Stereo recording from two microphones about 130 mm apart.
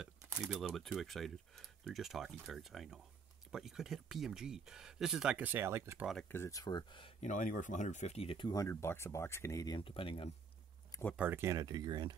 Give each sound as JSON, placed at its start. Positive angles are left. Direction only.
{"t": 0.2, "sound": "a sound", "side_deg": -20}
{"t": 0.5, "sound": "speech", "side_deg": 0}
{"t": 6.2, "sound": "speech", "side_deg": 20}
{"t": 6.6, "sound": "speech", "side_deg": 35}
{"t": 7.2, "sound": "speech", "side_deg": 80}
{"t": 8.5, "sound": "speech", "side_deg": 20}
{"t": 9.8, "sound": "speech", "side_deg": 45}
{"t": 11.1, "sound": "speech", "side_deg": -15}
{"t": 11.5, "sound": "speech", "side_deg": -30}